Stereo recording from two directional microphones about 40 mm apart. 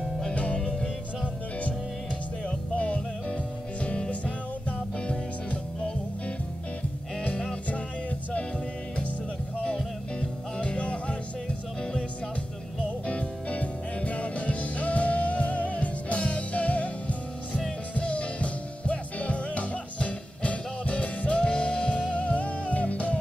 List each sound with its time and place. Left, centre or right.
0.3 s music: left
2.4 s music: left
10.2 s music: left
13.0 s music: left
22.1 s music: left